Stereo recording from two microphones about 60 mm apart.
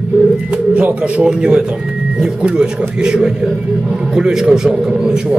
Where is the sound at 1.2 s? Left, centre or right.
Centre.